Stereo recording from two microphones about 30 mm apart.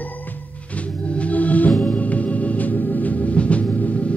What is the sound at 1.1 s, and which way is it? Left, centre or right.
Organ, left.